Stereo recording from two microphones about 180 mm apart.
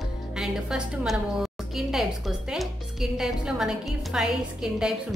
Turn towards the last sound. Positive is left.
turn(degrees=-5)  # may be behind; listen again after turning